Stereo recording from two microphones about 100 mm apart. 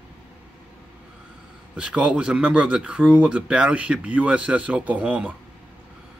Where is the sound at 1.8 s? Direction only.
10° right (ahead or behind).